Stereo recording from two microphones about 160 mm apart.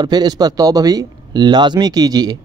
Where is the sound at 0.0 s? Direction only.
25° right (ahead or behind).